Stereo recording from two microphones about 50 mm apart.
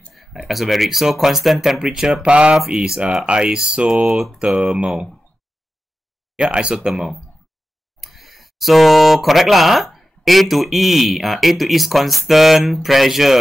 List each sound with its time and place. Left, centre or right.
0.1 s speech: centre
2.2 s a sound: right
2.7 s speech: centre
3.3 s speech: centre
4.6 s speech: centre
6.3 s speech: centre
6.9 s speech: centre